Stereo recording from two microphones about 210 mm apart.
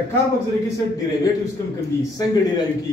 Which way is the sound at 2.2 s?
20° left (ahead or behind).